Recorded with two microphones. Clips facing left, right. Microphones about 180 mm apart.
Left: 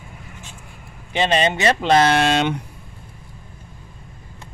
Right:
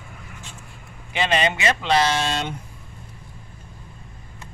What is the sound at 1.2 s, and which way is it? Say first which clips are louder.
Speech: left 3 dB; 30° left (ahead or behind).